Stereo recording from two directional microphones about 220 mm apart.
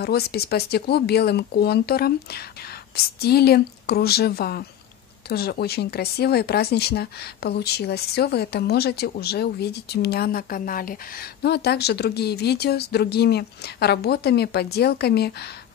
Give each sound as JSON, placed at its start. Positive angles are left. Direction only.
{"t": 0.0, "sound": "speech", "side_deg": 45}